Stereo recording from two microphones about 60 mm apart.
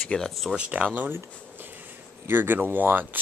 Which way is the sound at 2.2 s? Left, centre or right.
Right.